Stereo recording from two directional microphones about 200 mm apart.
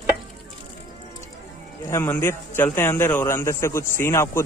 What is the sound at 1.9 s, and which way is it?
A man's voice, 15° left (ahead or behind).